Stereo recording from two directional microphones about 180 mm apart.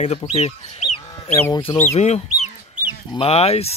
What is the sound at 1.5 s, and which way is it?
Speech, 30° left (ahead or behind).